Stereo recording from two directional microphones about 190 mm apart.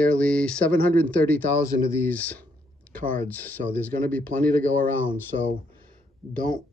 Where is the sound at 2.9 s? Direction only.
50° right (ahead or behind).